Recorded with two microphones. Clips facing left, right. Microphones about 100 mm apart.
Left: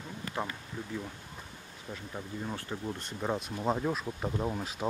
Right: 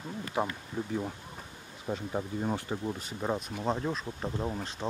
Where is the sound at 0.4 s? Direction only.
15° right (ahead or behind); by 2.5 s 35° right (ahead or behind).